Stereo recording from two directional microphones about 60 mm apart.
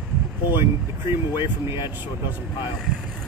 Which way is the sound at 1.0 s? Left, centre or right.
Right.